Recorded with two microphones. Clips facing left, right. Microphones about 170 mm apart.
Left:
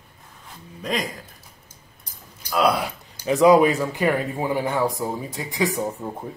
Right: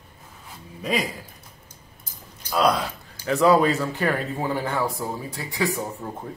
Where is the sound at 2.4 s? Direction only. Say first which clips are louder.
Left 1 dB; 5° left (ahead or behind).